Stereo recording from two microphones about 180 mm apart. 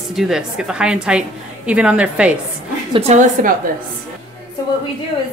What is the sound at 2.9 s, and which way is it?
Speech, 40° right (ahead or behind).